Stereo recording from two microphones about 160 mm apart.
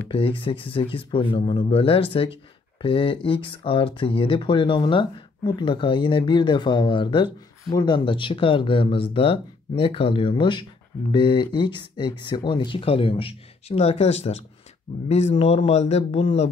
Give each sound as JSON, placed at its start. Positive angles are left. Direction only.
{"t": 0.1, "sound": "speech", "side_deg": 35}